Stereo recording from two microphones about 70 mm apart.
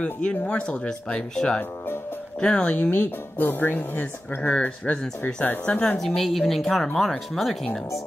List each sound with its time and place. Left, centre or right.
0.0 s speech: centre
2.9 s speech: left
4.5 s speech: centre
5.9 s speech: centre